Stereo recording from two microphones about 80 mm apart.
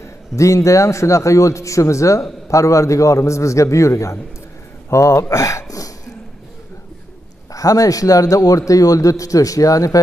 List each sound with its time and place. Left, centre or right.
0.0 s a man's voice: left
7.5 s a man's voice: left